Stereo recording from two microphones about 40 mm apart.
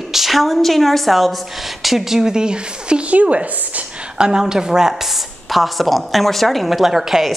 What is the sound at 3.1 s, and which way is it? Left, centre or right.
A woman's voice, right.